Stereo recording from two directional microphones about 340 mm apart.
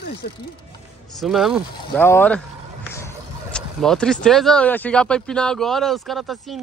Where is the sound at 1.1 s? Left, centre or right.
Centre.